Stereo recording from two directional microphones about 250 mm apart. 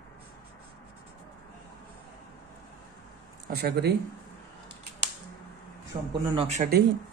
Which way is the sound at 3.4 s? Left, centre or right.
Right.